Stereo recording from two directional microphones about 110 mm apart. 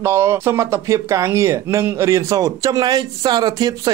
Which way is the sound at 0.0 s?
25° right (ahead or behind).